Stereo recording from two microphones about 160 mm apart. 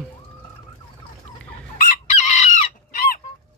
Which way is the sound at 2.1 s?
50° left (ahead or behind).